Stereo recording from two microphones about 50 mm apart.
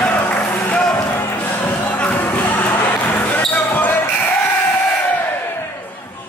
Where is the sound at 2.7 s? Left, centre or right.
Left.